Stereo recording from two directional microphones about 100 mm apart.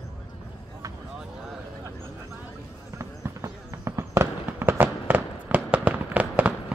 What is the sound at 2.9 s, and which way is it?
Fireworks, 30° right (ahead or behind).